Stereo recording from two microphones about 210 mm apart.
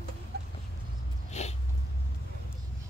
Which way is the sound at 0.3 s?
50° right (ahead or behind).